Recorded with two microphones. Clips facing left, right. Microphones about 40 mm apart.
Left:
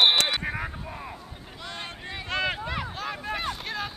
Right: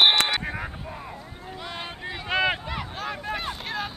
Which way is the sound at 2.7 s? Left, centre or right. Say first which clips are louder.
Even; centre.